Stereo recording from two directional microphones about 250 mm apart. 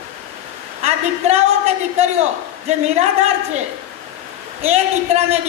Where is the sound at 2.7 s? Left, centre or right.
Right.